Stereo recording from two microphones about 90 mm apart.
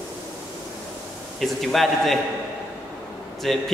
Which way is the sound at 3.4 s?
Centre (ahead or behind).